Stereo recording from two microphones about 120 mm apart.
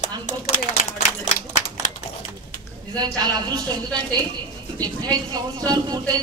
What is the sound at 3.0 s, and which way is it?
Speech, 35° right (ahead or behind).